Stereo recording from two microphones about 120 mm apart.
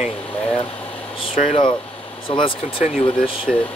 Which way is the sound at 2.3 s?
45° left (ahead or behind).